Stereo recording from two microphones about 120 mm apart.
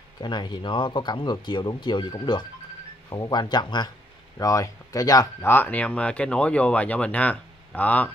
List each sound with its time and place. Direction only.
0.2 s speech: 40° left (ahead or behind); by 8.1 s 15° left (ahead or behind)